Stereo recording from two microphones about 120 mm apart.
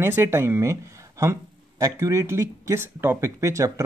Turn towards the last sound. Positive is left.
turn(degrees=-25)  # may be behind; listen again after turning